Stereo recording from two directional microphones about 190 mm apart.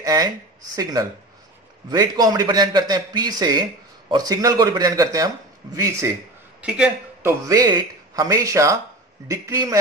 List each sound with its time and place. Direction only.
0.0 s a man's voice: 20° right (ahead or behind)
7.4 s speech: 20° right (ahead or behind)